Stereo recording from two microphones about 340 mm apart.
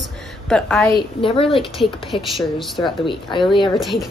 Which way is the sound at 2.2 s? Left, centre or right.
Centre.